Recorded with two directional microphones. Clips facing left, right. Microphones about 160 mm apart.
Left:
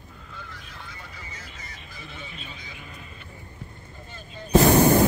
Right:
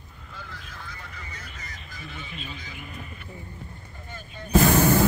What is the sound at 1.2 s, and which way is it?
Music, 20° left (ahead or behind).